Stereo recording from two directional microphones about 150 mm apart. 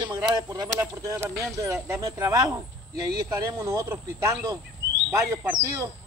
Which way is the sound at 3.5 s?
20° right (ahead or behind).